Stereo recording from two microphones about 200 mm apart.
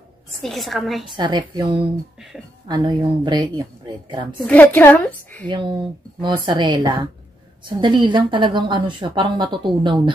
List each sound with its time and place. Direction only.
0.4 s a woman's voice: centre (ahead or behind)
1.1 s a woman's voice: 20° right (ahead or behind)
4.5 s a woman's voice: 10° left (ahead or behind)
5.5 s a woman's voice: 25° right (ahead or behind)